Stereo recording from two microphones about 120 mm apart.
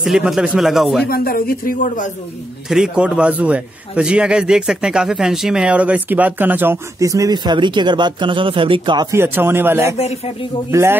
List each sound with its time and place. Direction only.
0.0 s speech: centre (ahead or behind)
2.7 s a man's voice: 5° right (ahead or behind); by 9.1 s 40° right (ahead or behind)
9.1 s speech: 20° right (ahead or behind)
9.9 s speech: 60° left (ahead or behind)
10.7 s speech: 20° right (ahead or behind)